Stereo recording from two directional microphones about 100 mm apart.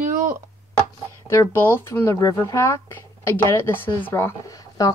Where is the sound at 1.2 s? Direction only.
25° left (ahead or behind).